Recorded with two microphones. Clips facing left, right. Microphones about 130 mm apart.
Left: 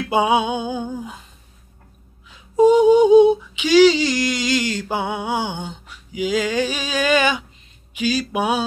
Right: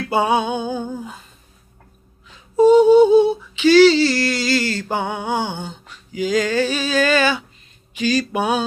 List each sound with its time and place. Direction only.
0.1 s music: 10° left (ahead or behind)
2.5 s a sound: 15° left (ahead or behind)
7.9 s music: 10° left (ahead or behind)